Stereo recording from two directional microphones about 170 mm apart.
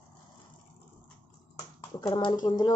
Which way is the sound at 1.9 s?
25° left (ahead or behind).